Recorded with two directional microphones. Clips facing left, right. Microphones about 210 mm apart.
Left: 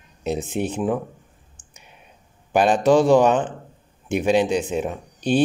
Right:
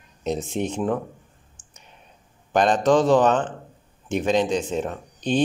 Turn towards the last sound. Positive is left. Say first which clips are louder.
# left 3 dB
turn(degrees=10)  # may be behind; listen again after turning